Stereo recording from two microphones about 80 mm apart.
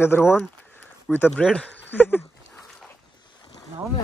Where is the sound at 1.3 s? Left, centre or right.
Centre.